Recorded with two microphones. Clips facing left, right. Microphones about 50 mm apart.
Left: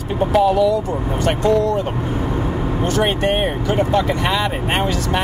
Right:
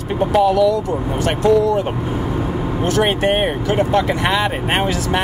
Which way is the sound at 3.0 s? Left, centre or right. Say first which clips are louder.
Right 1 dB; right.